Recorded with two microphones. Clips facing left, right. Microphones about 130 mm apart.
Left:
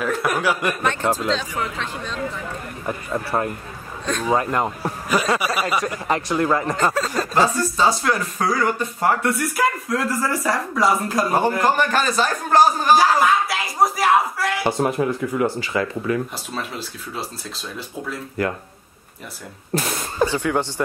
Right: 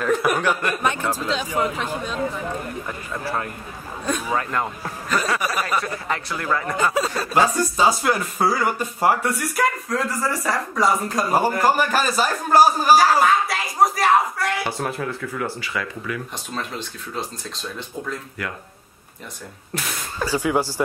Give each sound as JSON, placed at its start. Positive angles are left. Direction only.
{"t": 0.0, "sound": "speech", "side_deg": 0}
{"t": 1.0, "sound": "a man's voice", "side_deg": 20}
{"t": 1.3, "sound": "speech", "side_deg": -15}
{"t": 2.9, "sound": "a man's voice", "side_deg": 30}
{"t": 4.0, "sound": "a man's voice", "side_deg": -10}
{"t": 4.4, "sound": "a man's voice", "side_deg": 25}
{"t": 7.5, "sound": "speech", "side_deg": -15}
{"t": 14.6, "sound": "a man's voice", "side_deg": 20}
{"t": 16.5, "sound": "speech", "side_deg": 5}
{"t": 19.7, "sound": "a sound", "side_deg": 35}
{"t": 20.3, "sound": "speech", "side_deg": -10}